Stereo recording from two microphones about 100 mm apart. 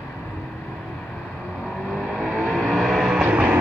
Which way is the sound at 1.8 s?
5° left (ahead or behind).